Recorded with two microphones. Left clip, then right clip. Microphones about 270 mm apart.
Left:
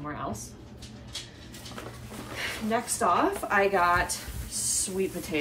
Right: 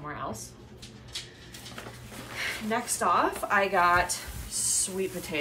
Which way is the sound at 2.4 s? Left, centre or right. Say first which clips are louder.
Left 1 dB; centre.